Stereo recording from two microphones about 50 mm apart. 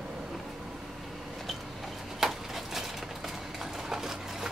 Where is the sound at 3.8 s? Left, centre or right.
Centre.